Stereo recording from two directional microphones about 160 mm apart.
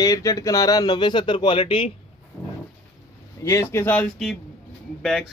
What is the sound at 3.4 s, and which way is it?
Speech, 20° left (ahead or behind).